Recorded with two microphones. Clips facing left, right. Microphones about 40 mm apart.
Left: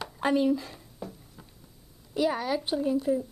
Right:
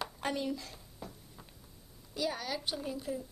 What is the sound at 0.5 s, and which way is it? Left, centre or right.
Speech, left.